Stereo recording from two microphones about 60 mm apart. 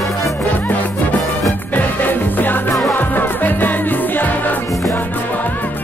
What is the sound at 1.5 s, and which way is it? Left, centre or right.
Music, left.